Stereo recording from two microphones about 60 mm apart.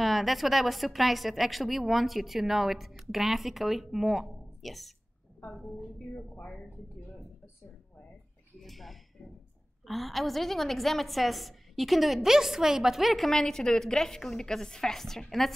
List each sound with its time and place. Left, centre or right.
0.0 s a woman's voice: centre
8.5 s a woman's voice: centre